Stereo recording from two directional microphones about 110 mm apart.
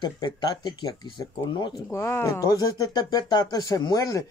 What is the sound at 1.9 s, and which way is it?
Speech, 25° left (ahead or behind).